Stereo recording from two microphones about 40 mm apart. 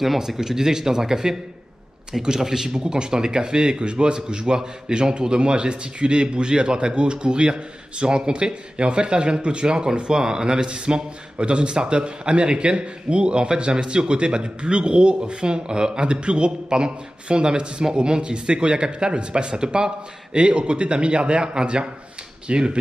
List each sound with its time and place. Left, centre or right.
0.0 s speech: centre; by 22.8 s right